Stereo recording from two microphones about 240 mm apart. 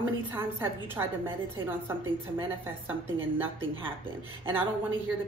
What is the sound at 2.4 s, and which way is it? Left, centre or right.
Speech, centre.